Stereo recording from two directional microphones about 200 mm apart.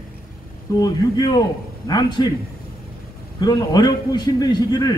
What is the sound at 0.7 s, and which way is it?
A man's voice, 20° left (ahead or behind).